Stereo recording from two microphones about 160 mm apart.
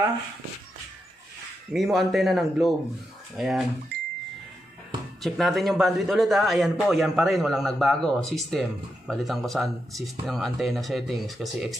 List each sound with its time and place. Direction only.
1.7 s a man's voice: centre (ahead or behind)
3.9 s a sound: 85° right
5.2 s a man's voice: centre (ahead or behind)